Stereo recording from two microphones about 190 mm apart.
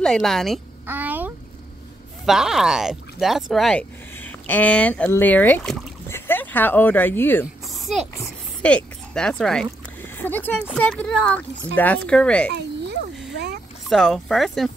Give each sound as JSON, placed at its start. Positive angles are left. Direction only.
{"t": 0.0, "sound": "speech", "side_deg": 0}
{"t": 0.8, "sound": "a sound", "side_deg": -10}
{"t": 2.2, "sound": "speech", "side_deg": 0}
{"t": 7.7, "sound": "a sound", "side_deg": 0}
{"t": 8.2, "sound": "boat", "side_deg": 5}
{"t": 10.8, "sound": "speech", "side_deg": 5}
{"t": 12.4, "sound": "a sound", "side_deg": -60}
{"t": 13.2, "sound": "boat", "side_deg": -60}
{"t": 13.8, "sound": "speech", "side_deg": 0}